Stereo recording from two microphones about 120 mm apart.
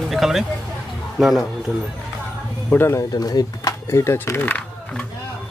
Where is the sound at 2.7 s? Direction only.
20° left (ahead or behind).